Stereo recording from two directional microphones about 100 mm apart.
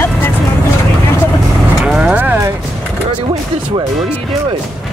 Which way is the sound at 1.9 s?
10° right (ahead or behind).